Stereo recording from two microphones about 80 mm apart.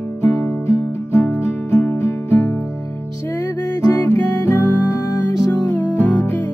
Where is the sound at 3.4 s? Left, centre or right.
Left.